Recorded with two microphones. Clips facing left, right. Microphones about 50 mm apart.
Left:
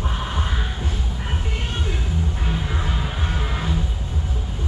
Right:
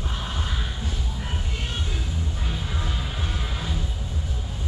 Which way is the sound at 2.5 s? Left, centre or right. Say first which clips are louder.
Left 5 dB; left.